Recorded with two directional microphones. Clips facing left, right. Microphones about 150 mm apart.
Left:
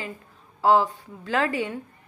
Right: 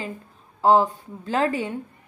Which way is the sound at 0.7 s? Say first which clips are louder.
Right 2 dB; 40° right (ahead or behind).